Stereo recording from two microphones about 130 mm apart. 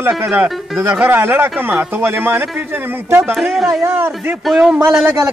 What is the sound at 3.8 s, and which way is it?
Speech, 15° right (ahead or behind).